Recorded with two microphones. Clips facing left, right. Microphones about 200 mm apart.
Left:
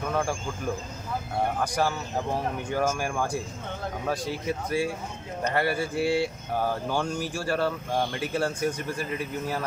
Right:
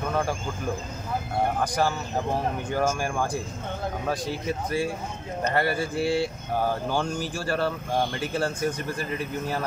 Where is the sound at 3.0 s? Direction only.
Centre (ahead or behind).